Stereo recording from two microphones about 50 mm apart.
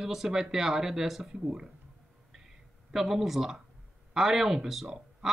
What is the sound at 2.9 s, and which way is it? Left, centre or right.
Speech, centre.